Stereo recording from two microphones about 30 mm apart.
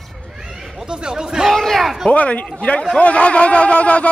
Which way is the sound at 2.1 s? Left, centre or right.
Left.